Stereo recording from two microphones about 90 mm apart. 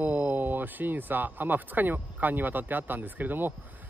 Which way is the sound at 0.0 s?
20° right (ahead or behind).